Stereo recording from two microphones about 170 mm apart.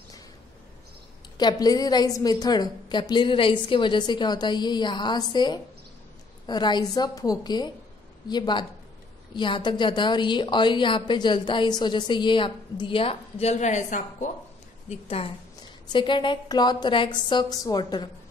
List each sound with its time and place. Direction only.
1.4 s a woman's voice: 20° left (ahead or behind); by 14.3 s 50° left (ahead or behind)
14.9 s a woman's voice: 35° left (ahead or behind)